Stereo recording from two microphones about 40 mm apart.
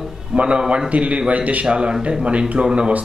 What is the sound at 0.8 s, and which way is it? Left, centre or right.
Speech, right.